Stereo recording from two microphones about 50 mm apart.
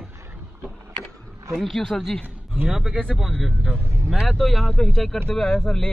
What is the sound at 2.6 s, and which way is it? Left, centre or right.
Speech, right.